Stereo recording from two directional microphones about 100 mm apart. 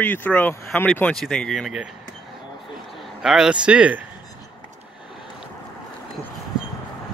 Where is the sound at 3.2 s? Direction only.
5° right (ahead or behind).